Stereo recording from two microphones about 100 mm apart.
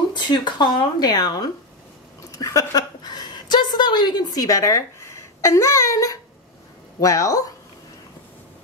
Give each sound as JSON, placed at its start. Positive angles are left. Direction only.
{"t": 0.1, "sound": "a woman's voice", "side_deg": 45}